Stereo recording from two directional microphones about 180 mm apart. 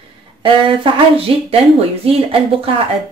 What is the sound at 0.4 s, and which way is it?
Speech, 30° right (ahead or behind).